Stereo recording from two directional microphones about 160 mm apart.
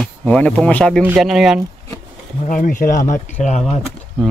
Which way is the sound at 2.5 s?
55° left (ahead or behind).